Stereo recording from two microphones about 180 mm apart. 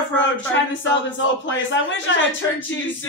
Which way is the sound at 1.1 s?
90° left.